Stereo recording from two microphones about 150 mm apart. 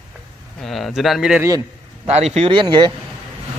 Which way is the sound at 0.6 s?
Centre (ahead or behind).